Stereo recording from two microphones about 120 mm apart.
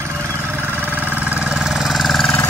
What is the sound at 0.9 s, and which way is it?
Vehicle, 15° right (ahead or behind).